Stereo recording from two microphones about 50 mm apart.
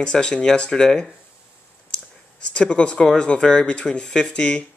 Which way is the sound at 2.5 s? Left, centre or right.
Centre.